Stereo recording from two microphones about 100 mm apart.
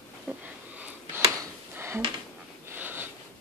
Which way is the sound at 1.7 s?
25° right (ahead or behind).